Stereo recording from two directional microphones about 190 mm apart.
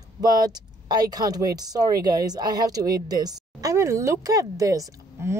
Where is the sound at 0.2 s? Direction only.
20° right (ahead or behind).